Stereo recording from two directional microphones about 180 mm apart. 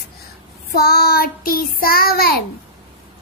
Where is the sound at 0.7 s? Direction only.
55° left (ahead or behind).